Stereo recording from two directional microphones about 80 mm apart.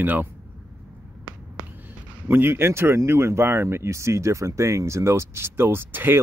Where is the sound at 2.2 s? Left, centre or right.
Right.